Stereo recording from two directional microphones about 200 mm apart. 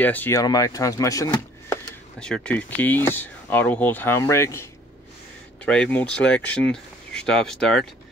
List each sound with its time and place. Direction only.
0.0 s speech: 10° left (ahead or behind)
2.1 s speech: 5° left (ahead or behind)
5.7 s speech: 5° left (ahead or behind)